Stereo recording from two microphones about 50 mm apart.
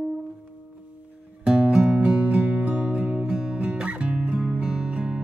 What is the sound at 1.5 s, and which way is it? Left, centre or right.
Music, centre.